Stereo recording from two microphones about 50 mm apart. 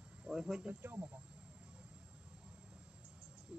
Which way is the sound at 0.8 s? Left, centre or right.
Right.